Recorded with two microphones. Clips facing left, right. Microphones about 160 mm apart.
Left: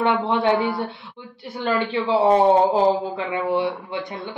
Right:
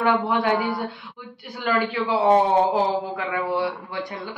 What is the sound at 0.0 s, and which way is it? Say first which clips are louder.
Speech: left 1 dB; 25° left (ahead or behind).